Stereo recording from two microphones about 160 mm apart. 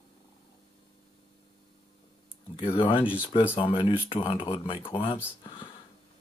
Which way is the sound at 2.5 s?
30° left (ahead or behind).